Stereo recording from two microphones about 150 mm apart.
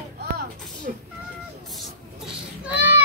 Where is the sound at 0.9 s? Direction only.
80° right.